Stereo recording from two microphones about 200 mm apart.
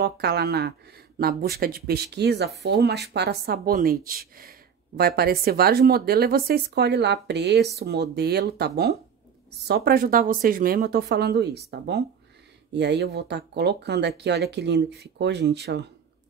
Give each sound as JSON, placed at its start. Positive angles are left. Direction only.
{"t": 0.0, "sound": "speech", "side_deg": -55}
{"t": 12.7, "sound": "speech", "side_deg": -60}